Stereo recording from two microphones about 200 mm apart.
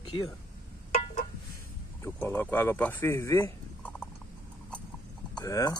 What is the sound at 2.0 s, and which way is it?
Speech, 10° left (ahead or behind).